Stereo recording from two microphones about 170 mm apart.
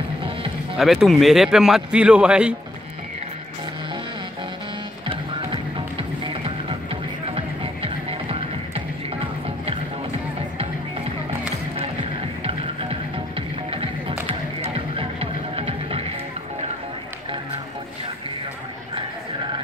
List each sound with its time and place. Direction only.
0.7 s a man's voice: centre (ahead or behind)
5.0 s music: 30° right (ahead or behind)
13.7 s music: 35° right (ahead or behind)